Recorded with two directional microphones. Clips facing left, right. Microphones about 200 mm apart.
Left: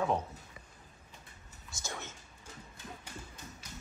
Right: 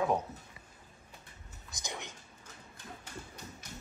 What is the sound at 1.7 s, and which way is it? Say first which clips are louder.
Speech: even; 15° right (ahead or behind).